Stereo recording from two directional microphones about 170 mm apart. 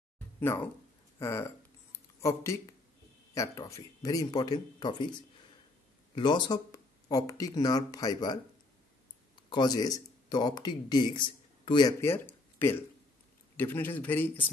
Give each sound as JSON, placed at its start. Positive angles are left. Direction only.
{"t": 1.2, "sound": "a sound", "side_deg": 15}
{"t": 3.3, "sound": "speech", "side_deg": 20}
{"t": 6.1, "sound": "speech", "side_deg": 25}
{"t": 9.5, "sound": "speech", "side_deg": 25}
{"t": 12.0, "sound": "a man's voice", "side_deg": 15}